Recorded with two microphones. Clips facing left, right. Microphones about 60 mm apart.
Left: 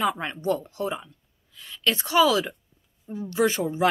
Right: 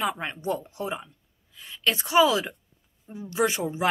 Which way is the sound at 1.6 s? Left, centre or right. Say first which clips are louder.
Left 1 dB; centre.